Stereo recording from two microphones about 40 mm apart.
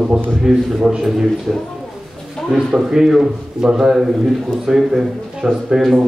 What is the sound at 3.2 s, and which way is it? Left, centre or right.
A man's voice, centre.